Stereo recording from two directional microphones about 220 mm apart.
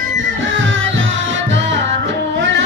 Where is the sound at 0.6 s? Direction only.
55° right (ahead or behind).